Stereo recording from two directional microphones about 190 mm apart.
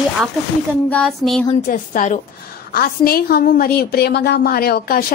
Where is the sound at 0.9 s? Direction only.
5° left (ahead or behind).